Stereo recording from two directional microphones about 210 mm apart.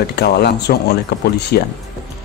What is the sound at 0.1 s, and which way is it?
Speech, 50° left (ahead or behind).